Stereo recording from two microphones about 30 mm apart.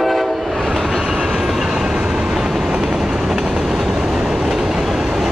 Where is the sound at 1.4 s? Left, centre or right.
Centre.